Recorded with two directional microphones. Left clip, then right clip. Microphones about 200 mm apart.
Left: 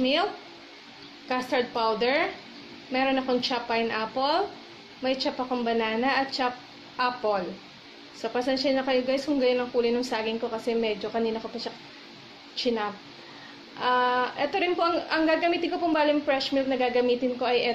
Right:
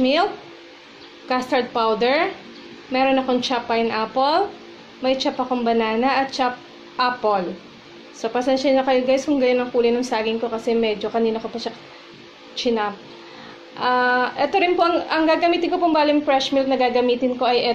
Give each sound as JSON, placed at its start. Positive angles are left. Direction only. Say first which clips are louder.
{"t": 0.0, "sound": "speech", "louder": "right 6 dB", "side_deg": -15}
{"t": 1.3, "sound": "speech", "louder": "right 6 dB", "side_deg": -15}